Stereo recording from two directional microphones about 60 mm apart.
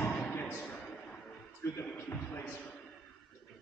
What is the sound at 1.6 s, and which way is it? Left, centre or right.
Speech, left.